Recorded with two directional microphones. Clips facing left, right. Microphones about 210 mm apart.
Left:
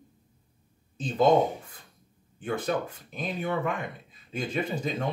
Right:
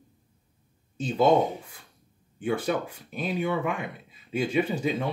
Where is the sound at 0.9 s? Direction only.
10° right (ahead or behind).